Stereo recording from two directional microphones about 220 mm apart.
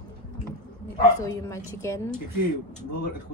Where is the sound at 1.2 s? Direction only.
15° left (ahead or behind).